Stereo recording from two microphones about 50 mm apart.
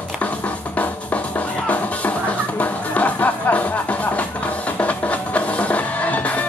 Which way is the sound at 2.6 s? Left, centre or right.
Left.